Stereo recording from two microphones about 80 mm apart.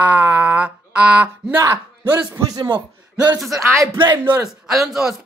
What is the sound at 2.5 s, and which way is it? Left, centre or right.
Speech, right.